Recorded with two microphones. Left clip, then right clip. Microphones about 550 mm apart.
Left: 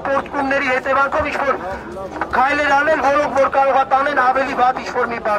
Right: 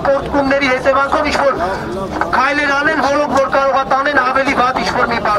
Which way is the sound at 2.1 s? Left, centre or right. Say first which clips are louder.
Right 2 dB; right.